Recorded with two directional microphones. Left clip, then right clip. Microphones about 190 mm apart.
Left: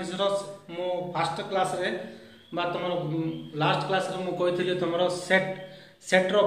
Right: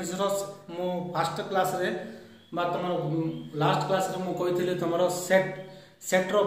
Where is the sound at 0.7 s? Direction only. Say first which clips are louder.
Left 2 dB; 25° right (ahead or behind).